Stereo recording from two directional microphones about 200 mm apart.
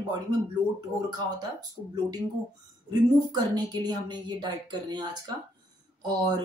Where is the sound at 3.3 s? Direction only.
20° right (ahead or behind).